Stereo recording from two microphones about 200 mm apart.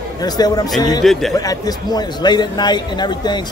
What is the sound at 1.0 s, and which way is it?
Speech, centre (ahead or behind).